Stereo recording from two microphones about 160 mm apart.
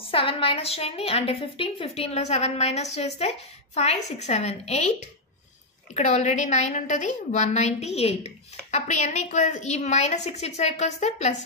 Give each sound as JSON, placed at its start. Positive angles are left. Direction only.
{"t": 0.0, "sound": "a woman's voice", "side_deg": 35}
{"t": 5.9, "sound": "a woman's voice", "side_deg": 45}